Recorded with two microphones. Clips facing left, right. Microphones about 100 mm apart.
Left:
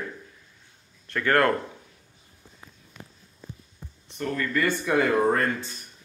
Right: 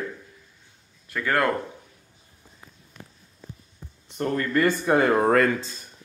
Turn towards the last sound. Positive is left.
turn(degrees=-90)